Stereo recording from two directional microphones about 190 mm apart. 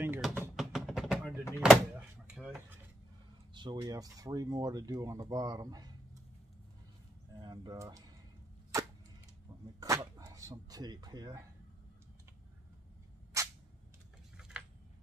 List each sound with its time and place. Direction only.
0.0 s a sound: 10° right (ahead or behind)
1.6 s door: 5° right (ahead or behind)
3.5 s speech: 25° right (ahead or behind)
7.3 s speech: 20° right (ahead or behind)
9.8 s speech: 15° right (ahead or behind)